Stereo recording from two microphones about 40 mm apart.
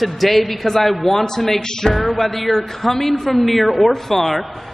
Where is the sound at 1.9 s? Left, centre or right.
Centre.